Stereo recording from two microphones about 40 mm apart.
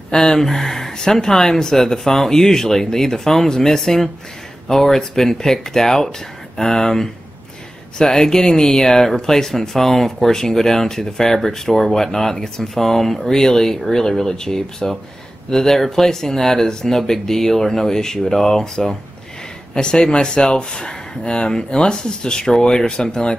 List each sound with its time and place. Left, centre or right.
0.1 s speech: centre